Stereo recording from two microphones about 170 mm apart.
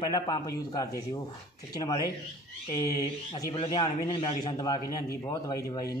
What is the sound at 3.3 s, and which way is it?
Speech, 25° left (ahead or behind).